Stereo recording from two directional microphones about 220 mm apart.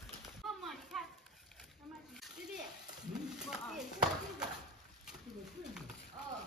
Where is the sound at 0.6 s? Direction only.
Centre (ahead or behind).